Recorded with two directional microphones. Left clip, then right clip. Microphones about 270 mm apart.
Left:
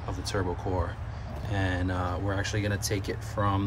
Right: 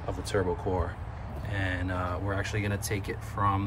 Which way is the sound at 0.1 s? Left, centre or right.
Centre.